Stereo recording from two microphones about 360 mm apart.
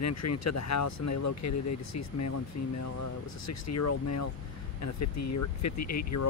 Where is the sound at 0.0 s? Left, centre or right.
Left.